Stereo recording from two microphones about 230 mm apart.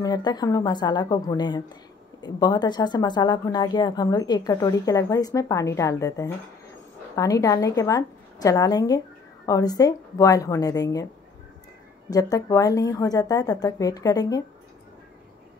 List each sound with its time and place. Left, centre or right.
0.0 s speech: centre
12.1 s speech: centre